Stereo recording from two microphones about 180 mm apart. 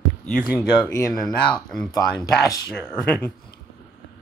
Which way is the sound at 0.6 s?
15° left (ahead or behind).